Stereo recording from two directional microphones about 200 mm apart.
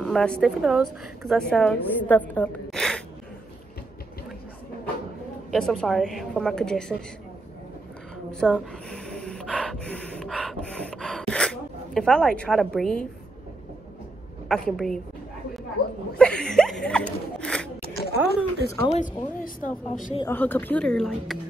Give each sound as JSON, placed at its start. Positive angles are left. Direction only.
{"t": 0.0, "sound": "a woman's voice", "side_deg": 5}
{"t": 5.5, "sound": "a woman's voice", "side_deg": 0}
{"t": 8.3, "sound": "gasp", "side_deg": 5}
{"t": 14.5, "sound": "a woman's voice", "side_deg": 5}
{"t": 16.2, "sound": "a sound", "side_deg": 5}
{"t": 17.9, "sound": "a woman's voice", "side_deg": 50}
{"t": 18.9, "sound": "a woman's voice", "side_deg": 35}
{"t": 20.2, "sound": "a woman's voice", "side_deg": 10}